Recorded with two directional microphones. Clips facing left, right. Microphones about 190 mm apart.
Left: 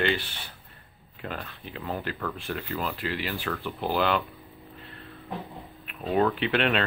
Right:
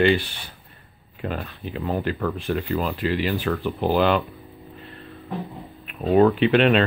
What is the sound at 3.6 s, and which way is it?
Speech, 50° right (ahead or behind).